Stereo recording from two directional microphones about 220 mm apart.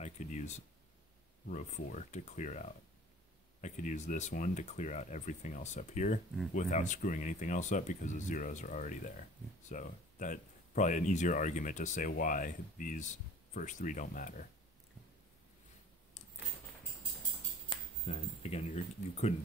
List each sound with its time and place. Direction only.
0.0 s speech: 35° left (ahead or behind)
17.6 s speech: 30° left (ahead or behind)